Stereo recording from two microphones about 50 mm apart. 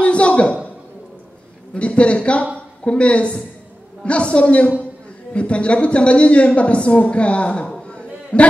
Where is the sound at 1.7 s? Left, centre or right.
Left.